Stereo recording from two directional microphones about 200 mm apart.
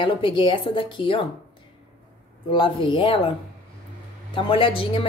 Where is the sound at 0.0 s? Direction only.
25° left (ahead or behind).